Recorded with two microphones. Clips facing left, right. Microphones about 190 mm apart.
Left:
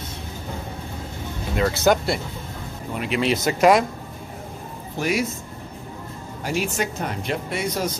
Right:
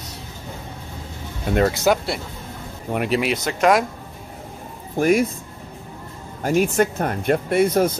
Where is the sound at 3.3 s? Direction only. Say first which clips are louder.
Left 3 dB; 5° left (ahead or behind).